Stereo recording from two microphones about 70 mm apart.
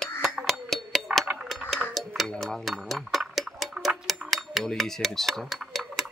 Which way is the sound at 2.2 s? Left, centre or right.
Centre.